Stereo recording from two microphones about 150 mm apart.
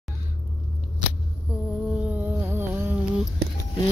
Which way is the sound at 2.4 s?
15° right (ahead or behind).